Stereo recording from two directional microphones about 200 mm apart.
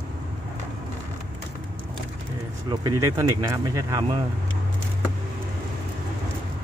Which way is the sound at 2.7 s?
15° right (ahead or behind).